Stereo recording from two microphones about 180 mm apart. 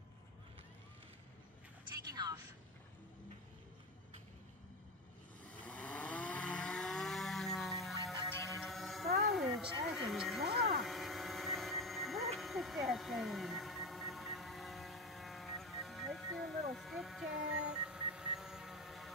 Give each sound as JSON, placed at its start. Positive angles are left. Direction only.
{"t": 5.5, "sound": "vehicle", "side_deg": 10}
{"t": 8.3, "sound": "music", "side_deg": 15}
{"t": 8.5, "sound": "a sound", "side_deg": 0}
{"t": 10.0, "sound": "music", "side_deg": 0}
{"t": 10.8, "sound": "vehicle", "side_deg": 0}